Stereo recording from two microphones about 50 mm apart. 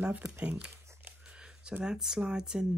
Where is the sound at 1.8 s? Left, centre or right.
Centre.